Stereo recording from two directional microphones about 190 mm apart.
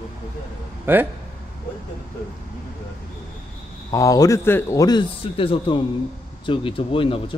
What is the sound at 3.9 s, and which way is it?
A man's voice, 20° left (ahead or behind).